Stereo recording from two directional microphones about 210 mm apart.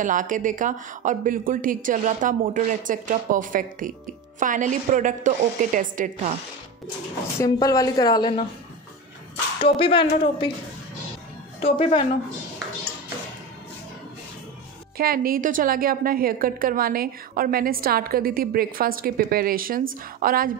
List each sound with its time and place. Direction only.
0.0 s a woman's voice: 40° right (ahead or behind)
7.3 s speech: 15° left (ahead or behind)
9.6 s speech: 25° left (ahead or behind)
11.6 s speech: 25° left (ahead or behind)
15.0 s a woman's voice: 45° right (ahead or behind)